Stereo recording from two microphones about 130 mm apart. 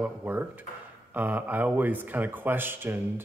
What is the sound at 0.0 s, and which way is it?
A man's voice, 15° right (ahead or behind).